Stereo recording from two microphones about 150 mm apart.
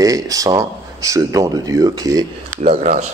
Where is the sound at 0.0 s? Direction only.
25° right (ahead or behind).